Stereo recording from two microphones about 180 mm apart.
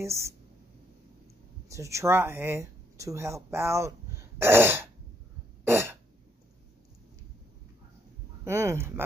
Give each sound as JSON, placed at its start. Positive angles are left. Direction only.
{"t": 0.0, "sound": "speech", "side_deg": -15}
{"t": 1.7, "sound": "speech", "side_deg": -15}
{"t": 5.7, "sound": "throat clearing", "side_deg": -15}
{"t": 8.5, "sound": "a sound", "side_deg": -15}